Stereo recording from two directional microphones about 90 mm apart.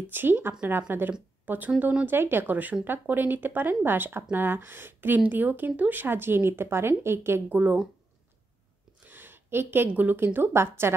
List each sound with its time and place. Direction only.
0.1 s speech: 25° right (ahead or behind)
9.0 s a woman's voice: 25° right (ahead or behind)